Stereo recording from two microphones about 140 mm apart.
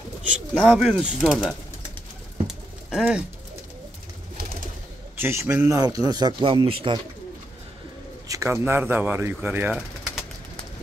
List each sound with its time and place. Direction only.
0.6 s speech: centre (ahead or behind)
2.4 s pigeon: 5° right (ahead or behind)
5.2 s a man's voice: 20° right (ahead or behind); by 7.0 s 40° right (ahead or behind)
8.3 s speech: 20° right (ahead or behind)